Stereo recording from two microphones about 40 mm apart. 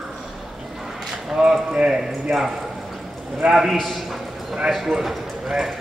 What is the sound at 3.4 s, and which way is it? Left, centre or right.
Speech, right.